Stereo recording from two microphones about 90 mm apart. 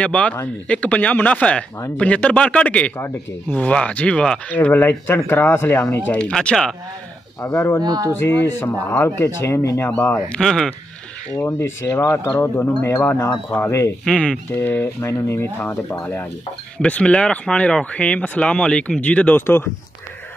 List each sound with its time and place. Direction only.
0.0 s speech: 15° left (ahead or behind)
4.6 s speech: 25° left (ahead or behind)
6.3 s speech: 5° left (ahead or behind)
7.4 s speech: 30° left (ahead or behind)
7.8 s speech: 45° right (ahead or behind)
8.1 s speech: 25° left (ahead or behind)
9.8 s speech: 20° left (ahead or behind)
10.3 s speech: 5° left (ahead or behind)
11.3 s speech: 30° left (ahead or behind)
14.0 s speech: 10° left (ahead or behind)
14.5 s speech: 20° left (ahead or behind)